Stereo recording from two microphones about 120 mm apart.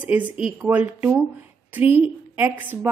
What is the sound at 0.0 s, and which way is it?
A woman's voice, 15° right (ahead or behind).